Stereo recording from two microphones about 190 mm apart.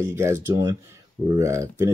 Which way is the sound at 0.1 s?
15° right (ahead or behind).